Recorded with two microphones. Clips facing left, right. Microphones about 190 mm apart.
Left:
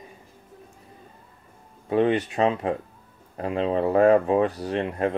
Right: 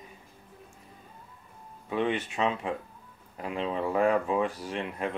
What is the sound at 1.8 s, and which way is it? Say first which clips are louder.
Speech: left 8 dB; 40° left (ahead or behind).